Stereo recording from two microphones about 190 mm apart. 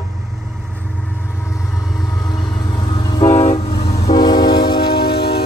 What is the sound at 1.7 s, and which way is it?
Vehicle, centre (ahead or behind).